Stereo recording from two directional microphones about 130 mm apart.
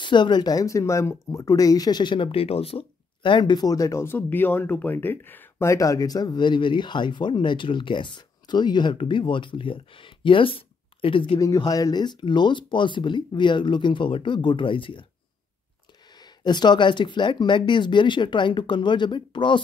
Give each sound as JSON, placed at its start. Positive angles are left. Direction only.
{"t": 0.0, "sound": "speech", "side_deg": 35}
{"t": 11.3, "sound": "speech", "side_deg": 25}
{"t": 16.2, "sound": "speech", "side_deg": 35}